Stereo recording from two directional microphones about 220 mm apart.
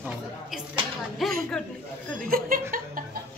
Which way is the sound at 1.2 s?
Centre (ahead or behind).